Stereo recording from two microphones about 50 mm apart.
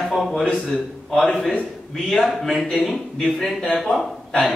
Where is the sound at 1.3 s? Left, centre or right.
Left.